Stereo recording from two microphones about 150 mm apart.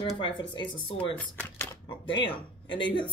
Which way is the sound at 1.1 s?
15° left (ahead or behind).